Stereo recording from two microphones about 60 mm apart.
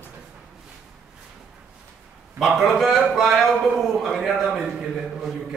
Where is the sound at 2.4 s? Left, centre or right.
Centre.